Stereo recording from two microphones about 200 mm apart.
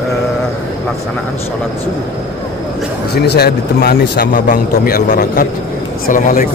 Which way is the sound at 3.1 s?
55° left (ahead or behind).